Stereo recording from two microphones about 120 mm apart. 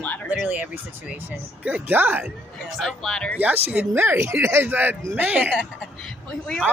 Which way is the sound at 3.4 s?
15° right (ahead or behind).